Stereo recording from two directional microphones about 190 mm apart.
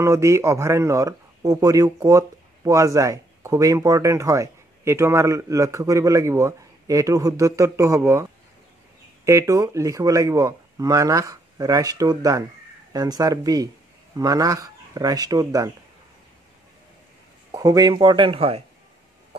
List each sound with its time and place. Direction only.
0.0 s speech: 15° right (ahead or behind)
17.5 s speech: 20° right (ahead or behind)